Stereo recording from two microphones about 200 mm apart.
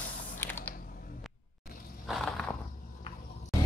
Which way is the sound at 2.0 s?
Centre (ahead or behind).